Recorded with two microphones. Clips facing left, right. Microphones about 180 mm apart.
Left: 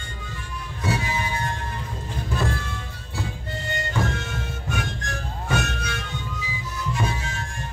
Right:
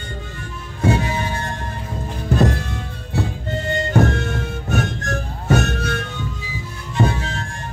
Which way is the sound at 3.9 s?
55° right (ahead or behind).